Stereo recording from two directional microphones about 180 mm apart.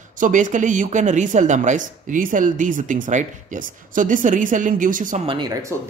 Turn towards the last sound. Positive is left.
turn(degrees=-20)  # may be behind; listen again after turning